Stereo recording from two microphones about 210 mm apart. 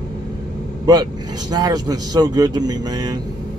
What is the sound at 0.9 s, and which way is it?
Speech, 20° right (ahead or behind).